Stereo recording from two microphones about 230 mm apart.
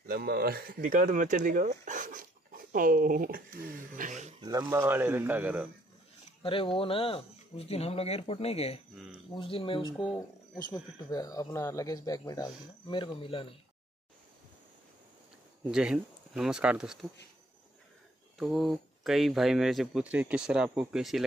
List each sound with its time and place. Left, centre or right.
0.1 s speech: right
4.4 s speech: centre
6.4 s speech: left
15.7 s speech: centre
18.4 s speech: centre